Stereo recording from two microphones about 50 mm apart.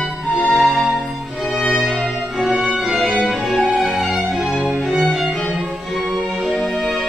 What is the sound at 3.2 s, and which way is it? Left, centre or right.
Music, centre.